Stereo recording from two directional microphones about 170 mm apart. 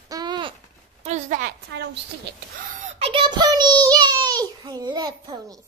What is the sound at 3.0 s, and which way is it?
A child's voice, 30° right (ahead or behind).